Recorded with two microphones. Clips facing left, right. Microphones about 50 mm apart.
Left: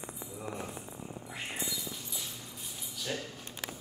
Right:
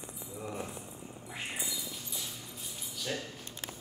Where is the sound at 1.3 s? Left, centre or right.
Centre.